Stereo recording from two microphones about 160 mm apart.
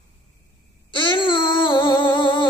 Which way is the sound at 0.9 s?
30° left (ahead or behind).